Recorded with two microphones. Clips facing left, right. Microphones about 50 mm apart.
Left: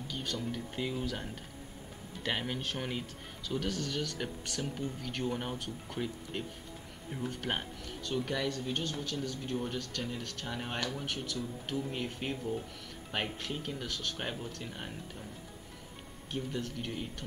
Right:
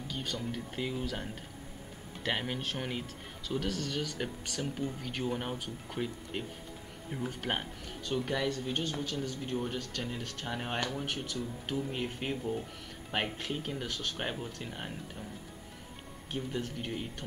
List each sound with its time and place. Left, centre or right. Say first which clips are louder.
0.1 s speech: even; centre
16.3 s speech: right 1 dB; centre